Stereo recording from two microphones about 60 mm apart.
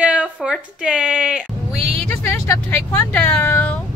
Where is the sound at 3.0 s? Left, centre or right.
Left.